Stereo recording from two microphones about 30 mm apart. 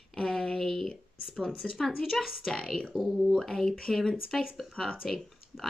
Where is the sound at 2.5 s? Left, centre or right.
Left.